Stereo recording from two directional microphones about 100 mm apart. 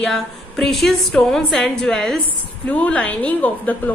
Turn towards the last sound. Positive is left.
turn(degrees=15)  # may be behind; listen again after turning